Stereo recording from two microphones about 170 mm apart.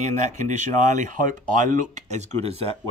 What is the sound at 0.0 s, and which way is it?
Speech, 45° right (ahead or behind).